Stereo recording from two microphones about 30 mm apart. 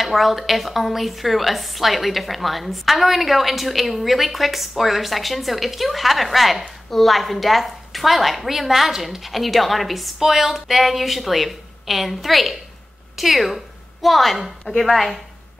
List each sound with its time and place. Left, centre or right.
0.0 s a woman's voice: centre